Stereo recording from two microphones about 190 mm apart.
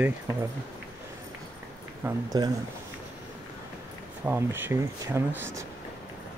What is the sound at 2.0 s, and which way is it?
Speech, 20° right (ahead or behind).